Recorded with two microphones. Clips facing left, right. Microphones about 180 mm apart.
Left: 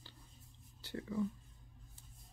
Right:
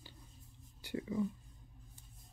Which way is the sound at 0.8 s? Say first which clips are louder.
Right 2 dB; 15° right (ahead or behind).